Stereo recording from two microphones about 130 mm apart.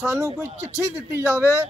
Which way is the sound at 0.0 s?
20° right (ahead or behind).